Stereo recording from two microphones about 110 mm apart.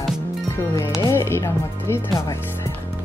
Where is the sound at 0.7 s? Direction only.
25° left (ahead or behind).